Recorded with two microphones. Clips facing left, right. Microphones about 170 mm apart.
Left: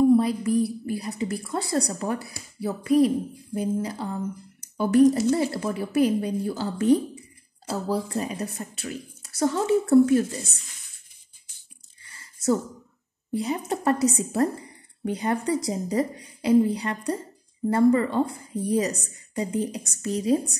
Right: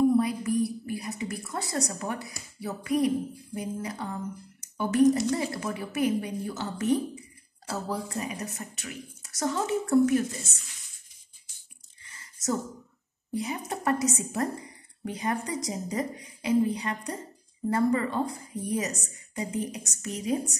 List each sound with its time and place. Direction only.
0.2 s a woman's voice: 30° left (ahead or behind)
12.0 s squish: 30° left (ahead or behind)
13.3 s a woman's voice: 30° left (ahead or behind)